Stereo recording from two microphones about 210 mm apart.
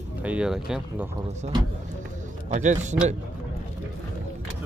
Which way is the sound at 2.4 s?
35° right (ahead or behind).